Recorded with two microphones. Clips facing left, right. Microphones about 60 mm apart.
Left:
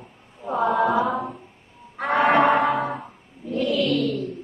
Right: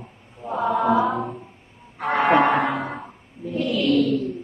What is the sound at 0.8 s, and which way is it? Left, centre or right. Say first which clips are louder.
Choir: right 4 dB; centre.